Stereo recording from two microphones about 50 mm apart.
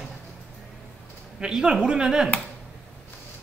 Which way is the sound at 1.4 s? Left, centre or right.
Centre.